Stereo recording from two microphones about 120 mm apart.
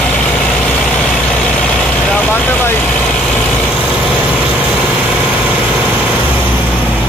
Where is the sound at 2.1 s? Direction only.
15° left (ahead or behind).